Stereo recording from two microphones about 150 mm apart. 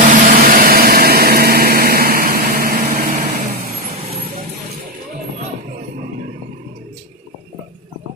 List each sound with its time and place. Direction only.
0.0 s vehicle: 65° right (ahead or behind)